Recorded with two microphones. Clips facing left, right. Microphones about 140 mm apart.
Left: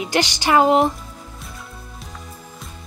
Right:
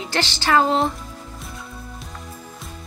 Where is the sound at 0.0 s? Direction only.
15° left (ahead or behind).